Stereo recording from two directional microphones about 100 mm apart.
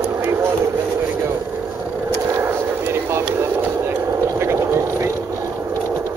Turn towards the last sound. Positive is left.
turn(degrees=-25)  # may be behind; listen again after turning